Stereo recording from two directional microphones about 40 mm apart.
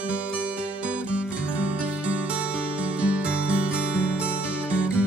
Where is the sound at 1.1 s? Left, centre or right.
Right.